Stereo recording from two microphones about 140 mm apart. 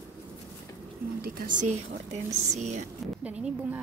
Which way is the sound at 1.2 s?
85° right.